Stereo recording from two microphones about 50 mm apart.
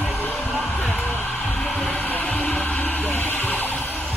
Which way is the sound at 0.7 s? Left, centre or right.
Left.